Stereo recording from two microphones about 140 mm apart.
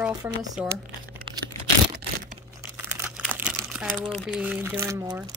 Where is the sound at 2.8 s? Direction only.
15° right (ahead or behind).